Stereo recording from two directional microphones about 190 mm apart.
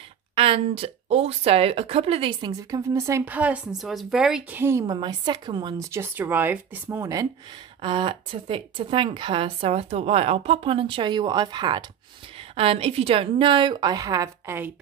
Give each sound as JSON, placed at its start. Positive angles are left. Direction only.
{"t": 0.4, "sound": "speech", "side_deg": -30}
{"t": 7.8, "sound": "a woman's voice", "side_deg": -25}